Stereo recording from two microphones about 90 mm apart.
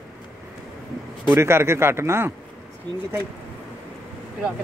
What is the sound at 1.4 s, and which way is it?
Speech, 30° right (ahead or behind).